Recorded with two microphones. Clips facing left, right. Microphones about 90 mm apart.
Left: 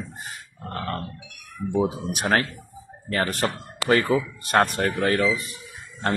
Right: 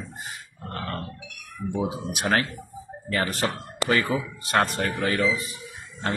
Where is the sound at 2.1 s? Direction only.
40° left (ahead or behind).